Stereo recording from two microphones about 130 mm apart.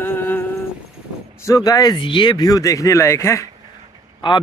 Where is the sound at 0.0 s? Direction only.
15° left (ahead or behind).